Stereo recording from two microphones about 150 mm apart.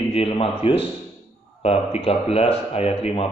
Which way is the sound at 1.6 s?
45° left (ahead or behind).